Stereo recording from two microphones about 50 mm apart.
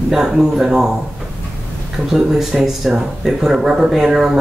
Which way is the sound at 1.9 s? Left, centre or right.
Centre.